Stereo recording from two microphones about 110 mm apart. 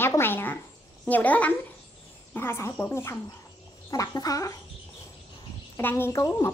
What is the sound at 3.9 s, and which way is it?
Speech, 35° left (ahead or behind).